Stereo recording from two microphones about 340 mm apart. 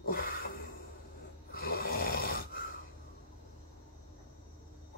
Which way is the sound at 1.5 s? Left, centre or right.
Left.